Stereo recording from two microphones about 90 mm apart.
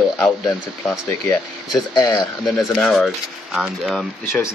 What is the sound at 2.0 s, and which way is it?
Speech, 45° left (ahead or behind).